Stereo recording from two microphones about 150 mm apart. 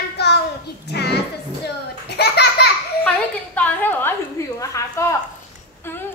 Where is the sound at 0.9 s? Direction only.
90° left.